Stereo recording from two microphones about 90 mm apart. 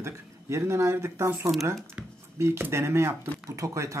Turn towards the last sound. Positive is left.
turn(degrees=-35)  # may be behind; listen again after turning